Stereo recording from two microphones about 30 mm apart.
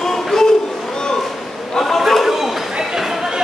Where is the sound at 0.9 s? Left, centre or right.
Left.